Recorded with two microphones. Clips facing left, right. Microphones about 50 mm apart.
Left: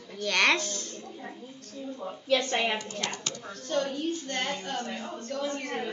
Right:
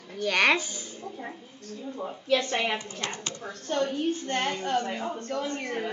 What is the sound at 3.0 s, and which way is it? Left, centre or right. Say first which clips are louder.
A woman's voice: even; right.